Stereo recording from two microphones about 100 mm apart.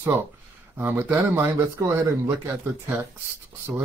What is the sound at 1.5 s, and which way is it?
Speech, 30° right (ahead or behind).